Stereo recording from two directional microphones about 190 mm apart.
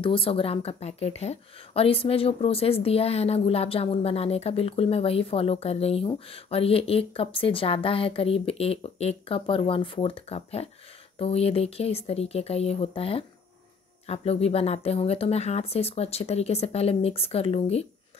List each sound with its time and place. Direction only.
0.0 s speech: 30° left (ahead or behind)